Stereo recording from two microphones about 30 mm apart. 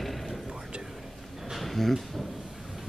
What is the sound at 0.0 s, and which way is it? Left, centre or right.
Whispering, centre.